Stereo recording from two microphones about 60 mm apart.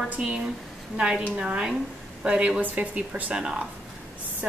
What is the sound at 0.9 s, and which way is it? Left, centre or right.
Speech, centre.